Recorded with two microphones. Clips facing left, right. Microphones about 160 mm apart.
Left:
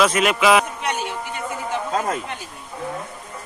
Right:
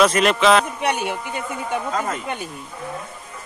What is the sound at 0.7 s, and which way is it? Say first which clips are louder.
Speech: right 3 dB; 60° right (ahead or behind).